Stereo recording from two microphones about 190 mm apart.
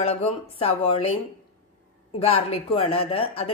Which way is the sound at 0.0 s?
30° left (ahead or behind).